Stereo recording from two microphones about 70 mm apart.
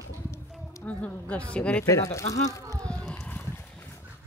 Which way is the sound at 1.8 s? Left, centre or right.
Left.